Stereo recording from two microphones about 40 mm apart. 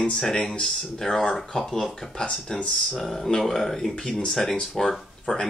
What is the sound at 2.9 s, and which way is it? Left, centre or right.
Speech, centre.